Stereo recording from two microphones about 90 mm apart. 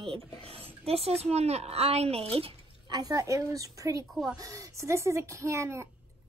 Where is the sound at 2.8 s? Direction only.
45° right (ahead or behind).